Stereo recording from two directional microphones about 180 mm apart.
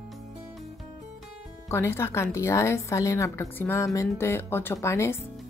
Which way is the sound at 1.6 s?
15° left (ahead or behind).